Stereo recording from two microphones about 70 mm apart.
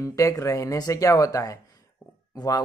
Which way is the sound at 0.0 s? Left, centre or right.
Left.